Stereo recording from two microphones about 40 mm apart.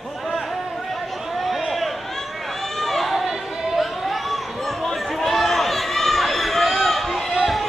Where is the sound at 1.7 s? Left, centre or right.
Centre.